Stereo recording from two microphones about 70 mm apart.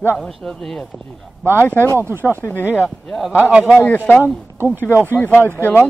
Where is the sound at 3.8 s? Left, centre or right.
Left.